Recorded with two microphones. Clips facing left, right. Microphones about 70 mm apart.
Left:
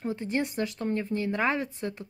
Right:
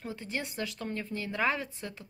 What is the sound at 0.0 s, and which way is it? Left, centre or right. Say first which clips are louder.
Speech: left 8 dB; left.